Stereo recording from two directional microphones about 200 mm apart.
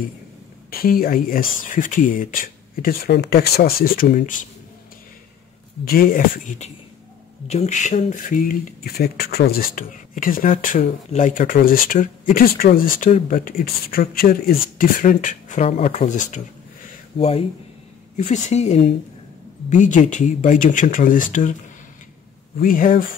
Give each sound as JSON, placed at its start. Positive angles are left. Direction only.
{"t": 0.7, "sound": "speech", "side_deg": 50}
{"t": 5.9, "sound": "speech", "side_deg": 45}
{"t": 22.6, "sound": "speech", "side_deg": 45}